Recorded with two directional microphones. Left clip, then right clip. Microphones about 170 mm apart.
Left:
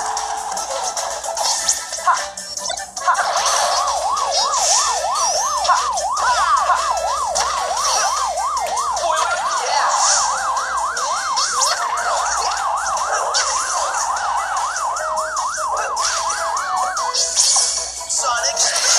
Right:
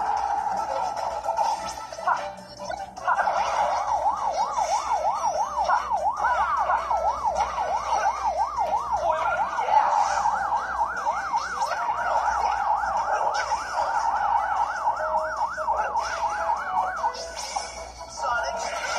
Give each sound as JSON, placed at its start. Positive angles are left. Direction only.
{"t": 3.1, "sound": "music", "side_deg": 20}
{"t": 4.4, "sound": "emergency vehicle", "side_deg": 20}
{"t": 11.3, "sound": "emergency vehicle", "side_deg": 20}
{"t": 18.3, "sound": "music", "side_deg": 20}